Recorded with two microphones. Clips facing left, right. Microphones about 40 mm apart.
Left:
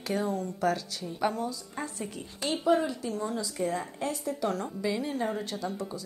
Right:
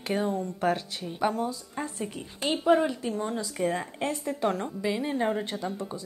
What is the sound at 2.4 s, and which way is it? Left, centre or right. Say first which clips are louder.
A woman's voice: right 3 dB; right.